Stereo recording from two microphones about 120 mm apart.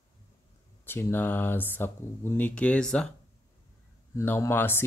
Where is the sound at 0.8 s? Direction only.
20° left (ahead or behind).